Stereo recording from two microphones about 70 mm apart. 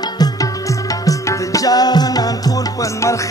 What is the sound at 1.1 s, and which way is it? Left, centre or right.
Music, left.